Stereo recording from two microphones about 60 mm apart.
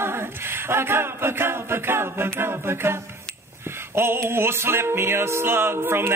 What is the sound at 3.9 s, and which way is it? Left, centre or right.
Music, right.